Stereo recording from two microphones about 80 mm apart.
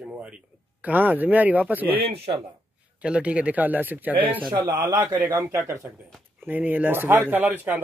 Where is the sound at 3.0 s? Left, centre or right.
Centre.